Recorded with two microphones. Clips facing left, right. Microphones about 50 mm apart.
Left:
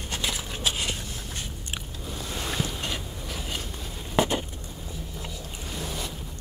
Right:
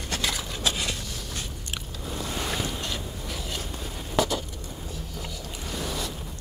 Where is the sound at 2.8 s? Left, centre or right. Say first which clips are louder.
Even; centre.